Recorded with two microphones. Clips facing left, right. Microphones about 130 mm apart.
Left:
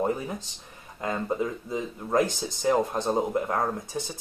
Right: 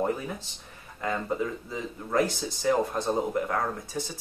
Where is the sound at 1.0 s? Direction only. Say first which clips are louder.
Left 1 dB; 20° left (ahead or behind).